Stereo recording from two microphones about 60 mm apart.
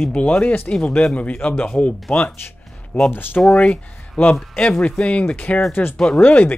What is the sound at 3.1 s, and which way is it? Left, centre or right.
Speech, left.